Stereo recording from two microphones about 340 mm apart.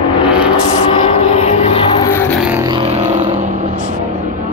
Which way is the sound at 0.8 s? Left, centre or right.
Centre.